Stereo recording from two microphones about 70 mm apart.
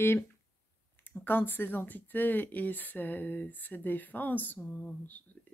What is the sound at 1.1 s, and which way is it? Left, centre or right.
Speech, left.